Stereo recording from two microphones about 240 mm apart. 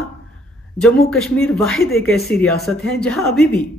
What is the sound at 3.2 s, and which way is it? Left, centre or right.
Speech, left.